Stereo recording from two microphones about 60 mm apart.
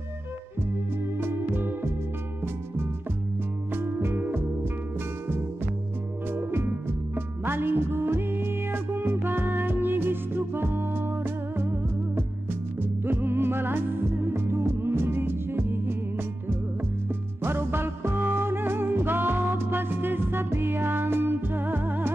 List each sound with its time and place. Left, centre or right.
1.2 s music: right
3.7 s music: right
6.3 s music: right
12.8 s music: right
17.4 s music: right